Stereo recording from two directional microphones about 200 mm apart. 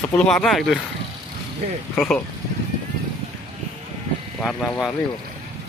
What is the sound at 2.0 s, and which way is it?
Speech, 5° left (ahead or behind).